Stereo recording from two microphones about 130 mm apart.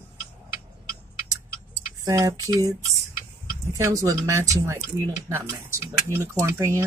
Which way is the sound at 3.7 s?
25° right (ahead or behind).